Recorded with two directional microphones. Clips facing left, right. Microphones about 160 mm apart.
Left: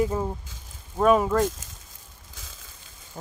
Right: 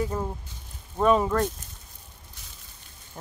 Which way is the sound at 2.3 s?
90° left.